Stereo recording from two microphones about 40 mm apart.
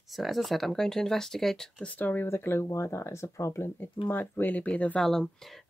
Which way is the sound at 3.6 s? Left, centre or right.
Left.